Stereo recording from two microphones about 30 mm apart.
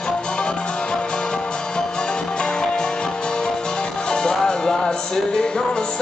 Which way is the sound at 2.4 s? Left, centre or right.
Left.